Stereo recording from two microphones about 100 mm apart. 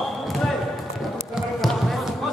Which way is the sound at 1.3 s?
Centre (ahead or behind).